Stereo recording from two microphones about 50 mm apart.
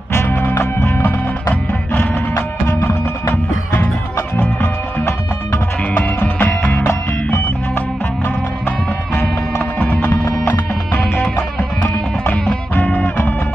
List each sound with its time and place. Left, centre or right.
0.3 s music: left
2.3 s music: left
4.4 s music: left
5.9 s music: left
9.6 s music: left
11.8 s music: left